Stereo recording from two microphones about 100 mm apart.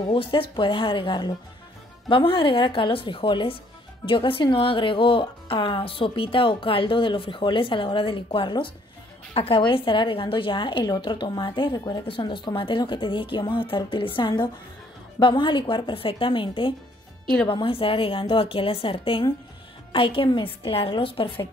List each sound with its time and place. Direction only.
0.1 s speech: 60° left (ahead or behind)
11.7 s speech: 40° left (ahead or behind)
12.1 s speech: 55° left (ahead or behind)